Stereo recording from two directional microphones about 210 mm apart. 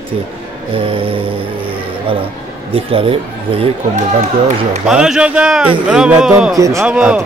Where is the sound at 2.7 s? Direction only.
25° right (ahead or behind).